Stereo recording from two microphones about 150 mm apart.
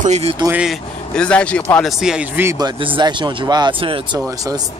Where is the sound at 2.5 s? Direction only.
30° right (ahead or behind).